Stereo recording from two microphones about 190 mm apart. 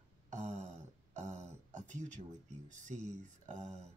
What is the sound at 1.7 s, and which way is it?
Speech, 40° right (ahead or behind).